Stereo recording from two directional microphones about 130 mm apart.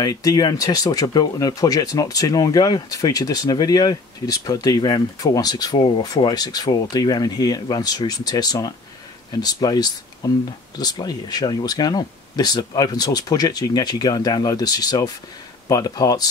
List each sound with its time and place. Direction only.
0.0 s speech: 25° left (ahead or behind)